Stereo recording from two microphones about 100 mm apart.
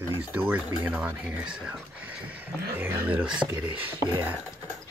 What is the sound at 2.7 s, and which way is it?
Speech, 15° right (ahead or behind).